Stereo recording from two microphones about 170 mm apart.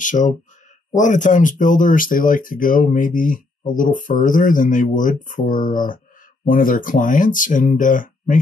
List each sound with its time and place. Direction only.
0.0 s speech: 50° left (ahead or behind)